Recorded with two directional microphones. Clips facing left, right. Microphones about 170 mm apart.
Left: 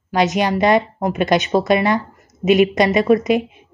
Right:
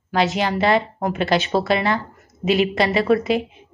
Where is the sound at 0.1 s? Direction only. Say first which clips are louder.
Left 3 dB; 20° left (ahead or behind).